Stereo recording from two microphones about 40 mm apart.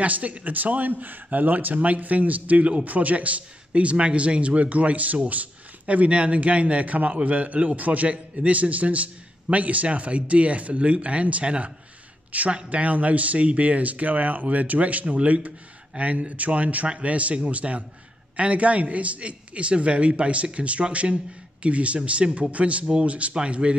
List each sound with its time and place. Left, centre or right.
0.0 s a man's voice: right